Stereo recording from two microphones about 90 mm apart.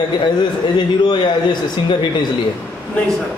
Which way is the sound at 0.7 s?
60° left (ahead or behind).